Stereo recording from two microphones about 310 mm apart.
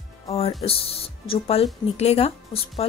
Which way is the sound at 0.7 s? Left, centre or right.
Centre.